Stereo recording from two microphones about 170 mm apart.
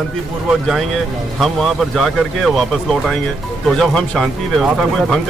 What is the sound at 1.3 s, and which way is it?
Speech, centre (ahead or behind).